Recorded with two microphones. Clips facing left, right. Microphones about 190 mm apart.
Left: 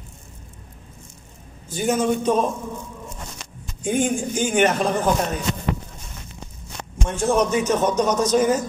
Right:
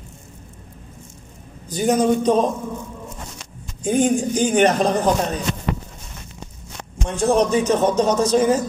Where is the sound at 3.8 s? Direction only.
40° right (ahead or behind).